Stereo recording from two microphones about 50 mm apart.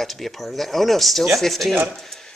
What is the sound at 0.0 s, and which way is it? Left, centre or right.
Speech, centre.